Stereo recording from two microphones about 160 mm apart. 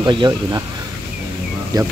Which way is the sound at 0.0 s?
30° right (ahead or behind).